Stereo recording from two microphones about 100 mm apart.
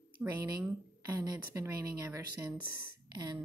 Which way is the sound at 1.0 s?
30° right (ahead or behind).